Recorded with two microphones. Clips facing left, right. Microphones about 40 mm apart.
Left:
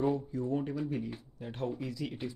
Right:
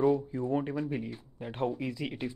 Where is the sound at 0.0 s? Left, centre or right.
Right.